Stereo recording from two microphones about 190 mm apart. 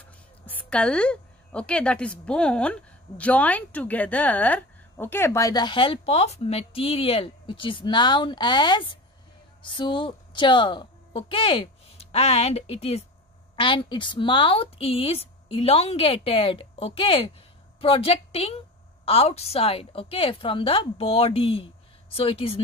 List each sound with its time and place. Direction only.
0.5 s a woman's voice: 5° left (ahead or behind); by 22.6 s 30° left (ahead or behind)